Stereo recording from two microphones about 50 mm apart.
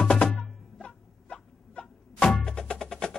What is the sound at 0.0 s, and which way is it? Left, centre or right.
Music, centre.